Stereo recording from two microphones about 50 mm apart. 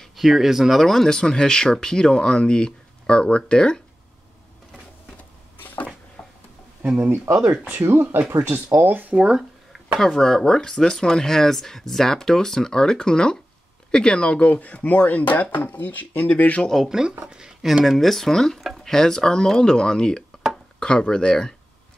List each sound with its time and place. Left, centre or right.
0.1 s speech: centre
6.2 s a sound: centre
7.0 s speech: right
7.3 s speech: right
7.7 s speech: right
9.9 s speech: centre
14.5 s speech: left
16.8 s speech: centre
17.8 s speech: centre